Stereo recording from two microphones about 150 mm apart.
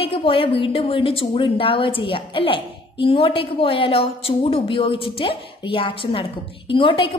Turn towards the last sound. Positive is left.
turn(degrees=35)  # may be behind; listen again after turning